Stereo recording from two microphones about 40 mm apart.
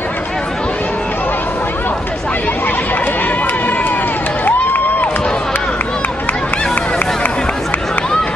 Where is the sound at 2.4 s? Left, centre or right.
Left.